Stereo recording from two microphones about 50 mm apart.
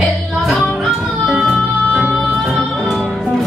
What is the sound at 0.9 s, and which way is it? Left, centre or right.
Music, centre.